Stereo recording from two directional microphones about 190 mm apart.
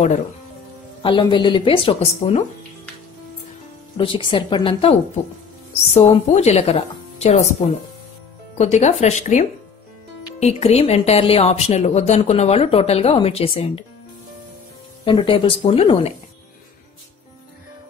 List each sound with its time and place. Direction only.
1.0 s a woman's voice: 25° left (ahead or behind)
3.9 s a woman's voice: 25° left (ahead or behind)
5.9 s speech: 35° left (ahead or behind)
8.5 s speech: 35° left (ahead or behind)
15.0 s a woman's voice: 25° left (ahead or behind)